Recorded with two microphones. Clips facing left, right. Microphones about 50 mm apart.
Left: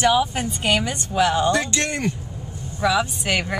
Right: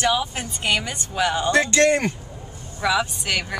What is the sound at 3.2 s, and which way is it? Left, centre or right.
Speech, centre.